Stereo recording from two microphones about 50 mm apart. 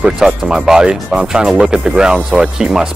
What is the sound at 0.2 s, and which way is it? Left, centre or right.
Speech, centre.